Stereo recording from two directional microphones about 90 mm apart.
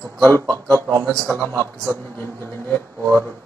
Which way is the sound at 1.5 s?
30° right (ahead or behind).